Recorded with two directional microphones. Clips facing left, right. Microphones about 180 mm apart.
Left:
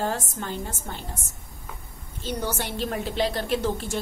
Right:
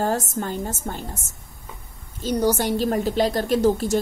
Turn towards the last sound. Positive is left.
turn(degrees=-40)  # may be behind; listen again after turning